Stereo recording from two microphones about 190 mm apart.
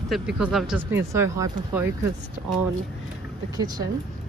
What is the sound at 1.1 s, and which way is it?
Speech, 15° right (ahead or behind).